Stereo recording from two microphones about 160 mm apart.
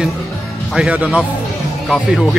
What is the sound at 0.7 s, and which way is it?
Speech, 5° right (ahead or behind).